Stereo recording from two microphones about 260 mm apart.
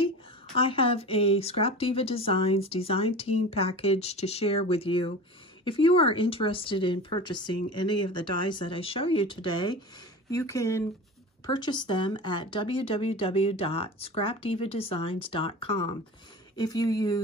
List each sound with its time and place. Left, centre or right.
0.6 s speech: left